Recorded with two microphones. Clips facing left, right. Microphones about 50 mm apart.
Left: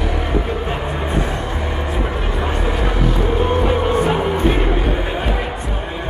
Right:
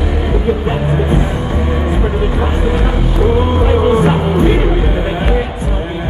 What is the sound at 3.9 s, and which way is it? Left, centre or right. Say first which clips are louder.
Music: right 5 dB; centre.